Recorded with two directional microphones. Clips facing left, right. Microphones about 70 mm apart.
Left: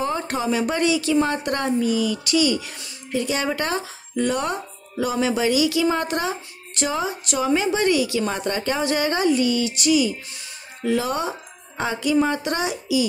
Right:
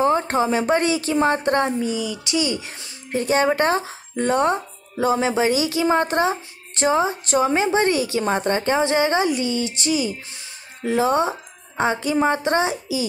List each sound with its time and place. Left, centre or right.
0.0 s speech: right
3.1 s speech: right